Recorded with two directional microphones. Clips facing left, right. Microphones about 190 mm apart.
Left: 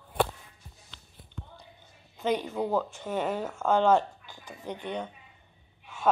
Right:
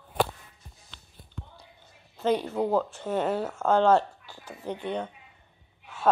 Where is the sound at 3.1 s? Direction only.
10° left (ahead or behind).